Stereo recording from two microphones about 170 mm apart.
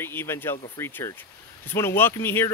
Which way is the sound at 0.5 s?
35° left (ahead or behind).